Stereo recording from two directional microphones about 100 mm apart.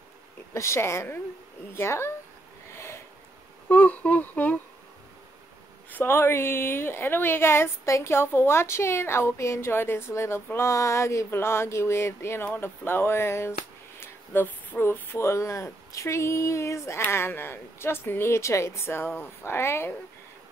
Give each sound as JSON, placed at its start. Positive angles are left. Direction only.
{"t": 0.6, "sound": "a woman's voice", "side_deg": 30}
{"t": 2.7, "sound": "snort", "side_deg": 25}
{"t": 3.6, "sound": "humming", "side_deg": 15}
{"t": 5.9, "sound": "a woman's voice", "side_deg": 25}